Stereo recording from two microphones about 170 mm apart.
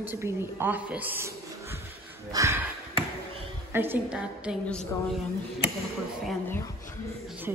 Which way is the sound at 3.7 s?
10° right (ahead or behind).